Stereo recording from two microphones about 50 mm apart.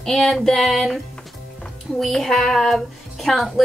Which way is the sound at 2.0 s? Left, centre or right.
Centre.